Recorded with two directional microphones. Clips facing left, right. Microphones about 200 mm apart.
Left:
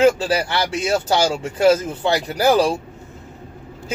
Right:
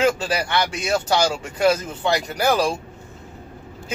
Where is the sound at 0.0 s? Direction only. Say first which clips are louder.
Left 5 dB; 35° left (ahead or behind).